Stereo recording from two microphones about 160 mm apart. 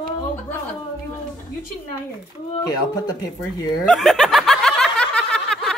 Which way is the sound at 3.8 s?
Centre (ahead or behind).